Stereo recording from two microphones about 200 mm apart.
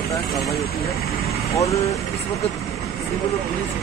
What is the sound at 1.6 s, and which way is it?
Speech, 15° left (ahead or behind).